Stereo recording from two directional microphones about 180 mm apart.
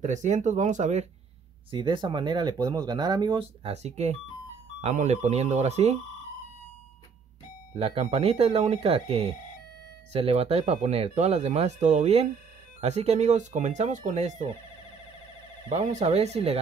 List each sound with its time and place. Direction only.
0.0 s speech: 40° right (ahead or behind)
1.7 s speech: 25° right (ahead or behind)
7.7 s speech: 35° right (ahead or behind)
15.7 s speech: 40° right (ahead or behind)